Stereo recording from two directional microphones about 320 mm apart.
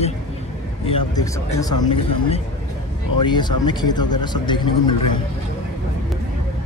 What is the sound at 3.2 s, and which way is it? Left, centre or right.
Speech, centre.